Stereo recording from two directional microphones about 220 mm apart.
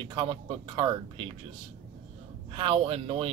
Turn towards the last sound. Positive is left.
turn(degrees=-25)  # may be behind; listen again after turning